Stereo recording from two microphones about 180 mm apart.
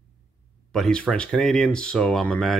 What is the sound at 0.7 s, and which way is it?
Speech, 5° left (ahead or behind).